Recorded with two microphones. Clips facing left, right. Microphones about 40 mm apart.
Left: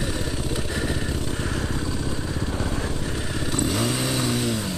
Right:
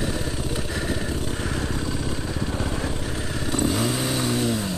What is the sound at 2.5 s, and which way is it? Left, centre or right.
Vehicle, centre.